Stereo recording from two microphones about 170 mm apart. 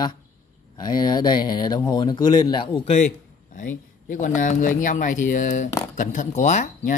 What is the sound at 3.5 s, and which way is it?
Speech, 50° left (ahead or behind).